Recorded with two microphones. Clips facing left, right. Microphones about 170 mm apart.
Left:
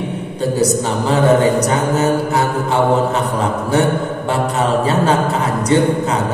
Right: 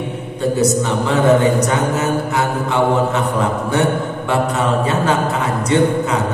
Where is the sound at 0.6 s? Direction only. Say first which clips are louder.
Even; 35° left (ahead or behind).